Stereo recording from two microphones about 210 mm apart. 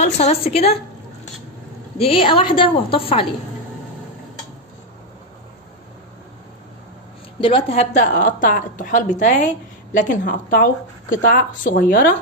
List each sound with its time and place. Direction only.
0.0 s a woman's voice: 30° left (ahead or behind)
2.0 s a woman's voice: 25° left (ahead or behind)
7.3 s a woman's voice: 25° left (ahead or behind); by 12.0 s 40° left (ahead or behind)